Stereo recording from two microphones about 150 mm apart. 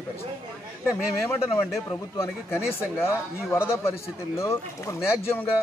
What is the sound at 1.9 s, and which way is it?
A man's voice, 15° left (ahead or behind).